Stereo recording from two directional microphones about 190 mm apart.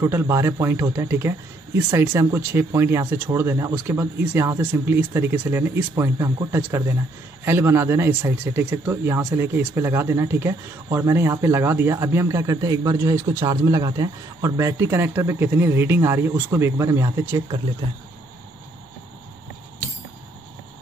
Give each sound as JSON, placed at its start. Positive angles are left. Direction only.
{"t": 0.0, "sound": "speech", "side_deg": -15}